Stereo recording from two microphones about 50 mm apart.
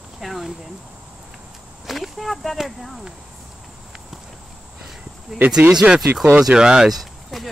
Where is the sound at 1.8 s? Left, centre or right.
Centre.